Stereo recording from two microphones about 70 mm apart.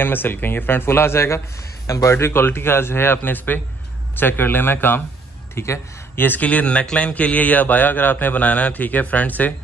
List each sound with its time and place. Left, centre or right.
0.0 s a man's voice: left